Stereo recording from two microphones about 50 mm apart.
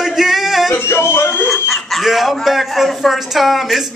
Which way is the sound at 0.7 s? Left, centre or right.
Left.